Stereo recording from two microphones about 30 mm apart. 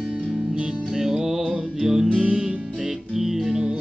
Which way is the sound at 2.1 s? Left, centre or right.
Right.